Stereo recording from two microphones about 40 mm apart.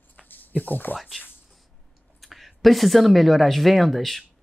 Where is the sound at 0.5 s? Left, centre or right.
Left.